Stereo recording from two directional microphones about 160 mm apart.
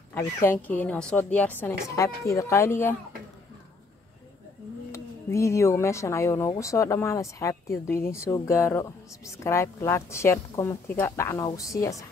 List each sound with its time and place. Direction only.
0.1 s speech: 15° left (ahead or behind)
4.9 s speech: 15° left (ahead or behind)